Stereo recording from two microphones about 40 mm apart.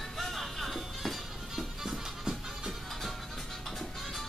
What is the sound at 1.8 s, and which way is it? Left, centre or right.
Music, centre.